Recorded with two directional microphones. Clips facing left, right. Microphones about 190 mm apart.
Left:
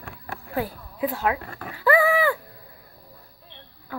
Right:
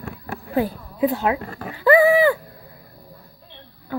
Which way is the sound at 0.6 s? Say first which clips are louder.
Right 7 dB; 25° right (ahead or behind).